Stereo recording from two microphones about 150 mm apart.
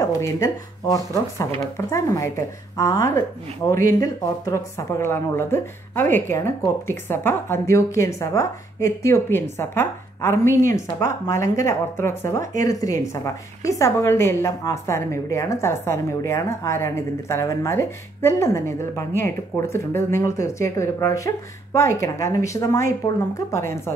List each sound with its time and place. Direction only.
0.0 s speech: 20° left (ahead or behind)